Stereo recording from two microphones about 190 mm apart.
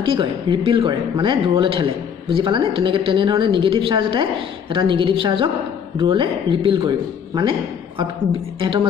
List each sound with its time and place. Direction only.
0.0 s speech: 25° right (ahead or behind)